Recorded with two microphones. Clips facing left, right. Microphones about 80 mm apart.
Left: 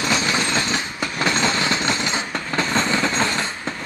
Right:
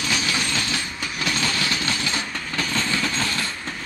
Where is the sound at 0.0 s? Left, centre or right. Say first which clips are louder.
Left 4 dB; left.